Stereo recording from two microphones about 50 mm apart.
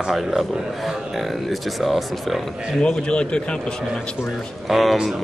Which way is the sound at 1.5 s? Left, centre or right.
Centre.